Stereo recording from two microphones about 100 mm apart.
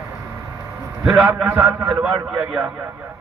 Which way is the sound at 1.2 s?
15° right (ahead or behind).